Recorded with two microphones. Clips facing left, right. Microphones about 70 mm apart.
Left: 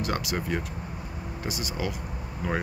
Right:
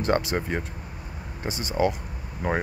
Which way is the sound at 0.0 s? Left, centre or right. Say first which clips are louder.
Right 5 dB; right.